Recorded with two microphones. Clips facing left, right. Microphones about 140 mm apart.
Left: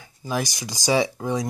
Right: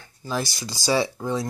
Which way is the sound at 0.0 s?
15° left (ahead or behind).